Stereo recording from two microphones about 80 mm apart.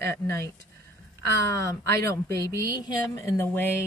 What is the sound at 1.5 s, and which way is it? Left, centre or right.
Speech, left.